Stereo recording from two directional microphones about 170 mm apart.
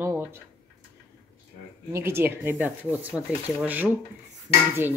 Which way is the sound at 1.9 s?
15° right (ahead or behind).